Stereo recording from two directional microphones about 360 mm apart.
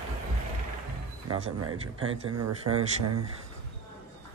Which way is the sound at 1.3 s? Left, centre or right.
Right.